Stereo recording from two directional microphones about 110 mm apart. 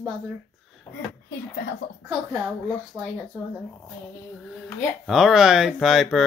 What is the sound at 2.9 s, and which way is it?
Speech, 15° right (ahead or behind).